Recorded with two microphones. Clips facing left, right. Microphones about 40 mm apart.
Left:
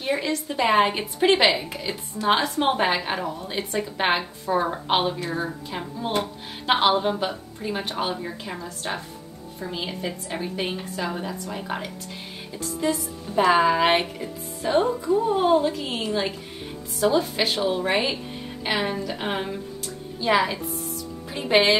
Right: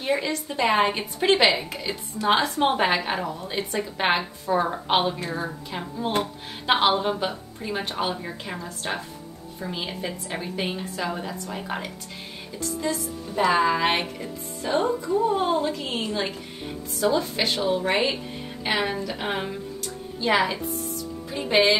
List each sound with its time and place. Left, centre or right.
0.0 s a woman's voice: centre
13.3 s speech: centre
14.6 s speech: centre
15.2 s a woman's voice: centre
18.8 s a woman's voice: centre
21.3 s speech: centre